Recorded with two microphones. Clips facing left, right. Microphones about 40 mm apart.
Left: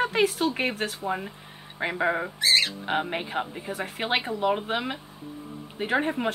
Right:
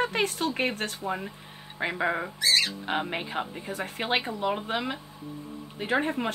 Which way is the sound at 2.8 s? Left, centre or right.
Centre.